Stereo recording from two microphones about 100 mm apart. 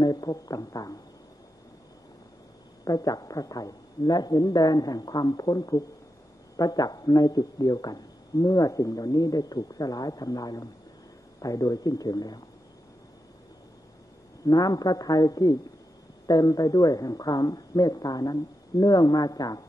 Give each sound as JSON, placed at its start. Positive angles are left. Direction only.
{"t": 0.0, "sound": "a man's voice", "side_deg": 40}
{"t": 2.8, "sound": "a man's voice", "side_deg": 40}
{"t": 14.4, "sound": "a man's voice", "side_deg": 40}